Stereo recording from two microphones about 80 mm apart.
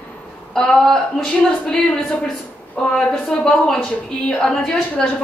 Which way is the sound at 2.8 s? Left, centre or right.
Centre.